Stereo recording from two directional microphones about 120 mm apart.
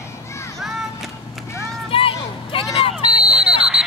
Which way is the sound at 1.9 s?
50° left (ahead or behind).